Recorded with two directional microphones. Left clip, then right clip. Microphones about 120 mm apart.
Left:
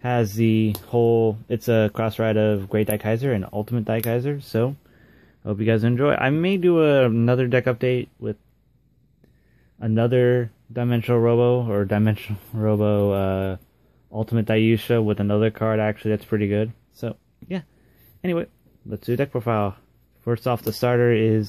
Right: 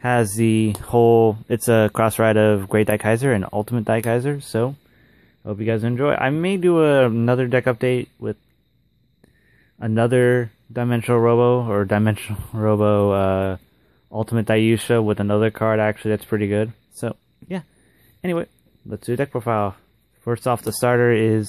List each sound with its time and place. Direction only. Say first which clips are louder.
0.0 s speech: right 3 dB; 30° right (ahead or behind)
0.8 s speech: right 5 dB; 45° right (ahead or behind)
4.5 s speech: left 1 dB; 20° right (ahead or behind)
5.4 s speech: left 1 dB; 5° left (ahead or behind)
6.4 s speech: right 2 dB; 20° right (ahead or behind)
9.8 s speech: right 2 dB; 30° right (ahead or behind)
16.9 s speech: right 4 dB; 40° right (ahead or behind)
18.2 s speech: right 1 dB; 20° right (ahead or behind)